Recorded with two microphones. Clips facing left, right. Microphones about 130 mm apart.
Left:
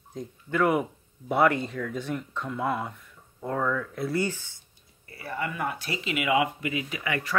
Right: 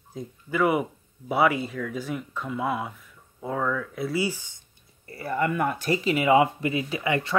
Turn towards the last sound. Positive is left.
turn(degrees=-25)  # may be behind; listen again after turning